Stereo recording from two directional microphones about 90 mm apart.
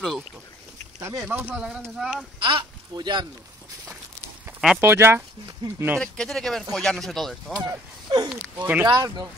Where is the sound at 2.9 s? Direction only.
55° right (ahead or behind).